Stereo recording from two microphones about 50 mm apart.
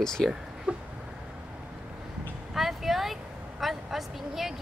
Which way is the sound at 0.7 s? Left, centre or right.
Right.